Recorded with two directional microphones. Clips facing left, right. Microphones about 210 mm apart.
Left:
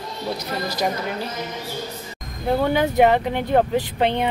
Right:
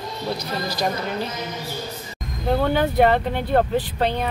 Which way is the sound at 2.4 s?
10° left (ahead or behind).